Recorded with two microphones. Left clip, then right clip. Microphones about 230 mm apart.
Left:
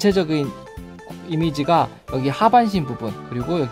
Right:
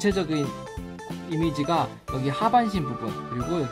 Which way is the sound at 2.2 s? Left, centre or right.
Left.